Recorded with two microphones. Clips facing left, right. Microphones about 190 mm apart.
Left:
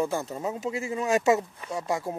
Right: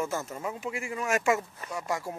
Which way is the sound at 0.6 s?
35° left (ahead or behind).